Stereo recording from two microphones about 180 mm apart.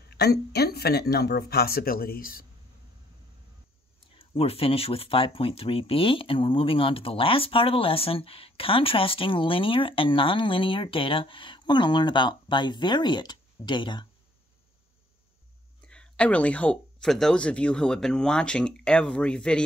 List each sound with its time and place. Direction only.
0.1 s speech: 60° left (ahead or behind)
4.2 s speech: 30° left (ahead or behind)
15.8 s speech: 5° left (ahead or behind)